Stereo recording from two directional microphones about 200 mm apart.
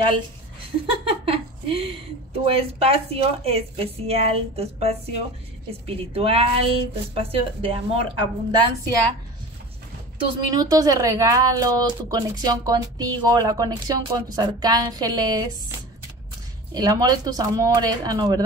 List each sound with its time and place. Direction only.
1.0 s a sound: 30° right (ahead or behind)
2.5 s speech: 30° right (ahead or behind)
10.5 s speech: 15° right (ahead or behind)
16.7 s speech: 20° right (ahead or behind)